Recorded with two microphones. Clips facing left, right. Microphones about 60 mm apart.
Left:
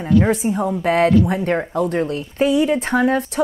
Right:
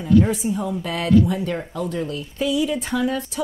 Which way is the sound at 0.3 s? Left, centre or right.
Left.